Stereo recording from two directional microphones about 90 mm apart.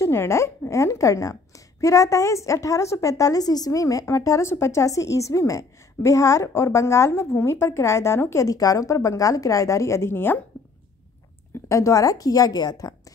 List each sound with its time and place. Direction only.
0.0 s a woman's voice: 30° left (ahead or behind)
11.7 s a woman's voice: 35° left (ahead or behind)